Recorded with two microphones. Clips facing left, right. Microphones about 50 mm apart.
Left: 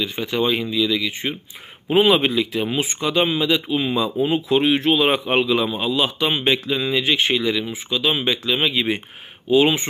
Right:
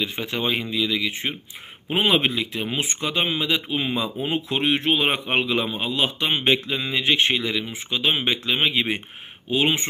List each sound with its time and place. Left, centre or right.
0.0 s speech: right
1.9 s speech: centre
3.5 s speech: right
7.6 s speech: right